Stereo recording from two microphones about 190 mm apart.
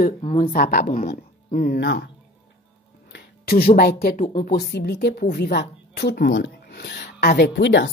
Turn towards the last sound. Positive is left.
turn(degrees=65)  # may be behind; listen again after turning